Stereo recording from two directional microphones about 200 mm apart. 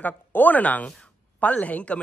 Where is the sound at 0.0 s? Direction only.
10° left (ahead or behind).